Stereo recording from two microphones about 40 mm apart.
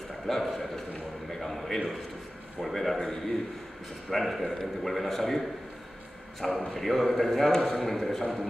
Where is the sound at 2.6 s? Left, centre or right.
Centre.